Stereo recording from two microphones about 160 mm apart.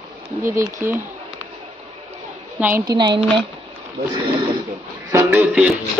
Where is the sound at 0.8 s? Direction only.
15° right (ahead or behind).